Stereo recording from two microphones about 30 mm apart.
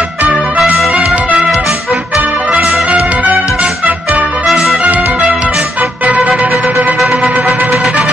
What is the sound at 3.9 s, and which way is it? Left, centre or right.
Music, right.